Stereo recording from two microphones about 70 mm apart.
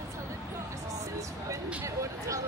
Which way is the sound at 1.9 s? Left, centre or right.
Right.